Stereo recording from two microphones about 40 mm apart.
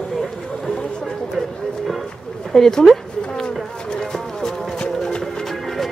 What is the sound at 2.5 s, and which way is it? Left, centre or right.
Speech, centre.